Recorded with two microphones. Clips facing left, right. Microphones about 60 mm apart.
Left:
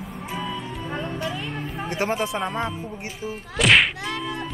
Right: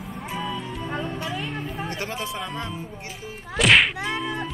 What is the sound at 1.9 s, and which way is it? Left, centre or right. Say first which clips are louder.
Speech: left 6 dB; left.